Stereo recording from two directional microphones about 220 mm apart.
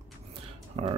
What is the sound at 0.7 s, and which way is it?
Music, 25° right (ahead or behind).